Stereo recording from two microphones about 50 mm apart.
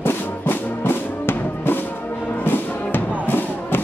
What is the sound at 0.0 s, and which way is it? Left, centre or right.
Music, left.